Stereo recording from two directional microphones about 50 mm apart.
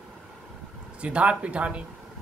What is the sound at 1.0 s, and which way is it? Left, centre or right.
Speech, right.